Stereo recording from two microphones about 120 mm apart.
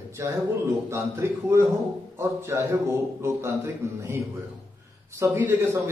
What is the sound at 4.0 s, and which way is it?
A man's voice, 20° right (ahead or behind).